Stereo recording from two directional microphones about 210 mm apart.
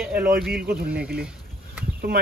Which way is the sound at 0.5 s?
50° right (ahead or behind).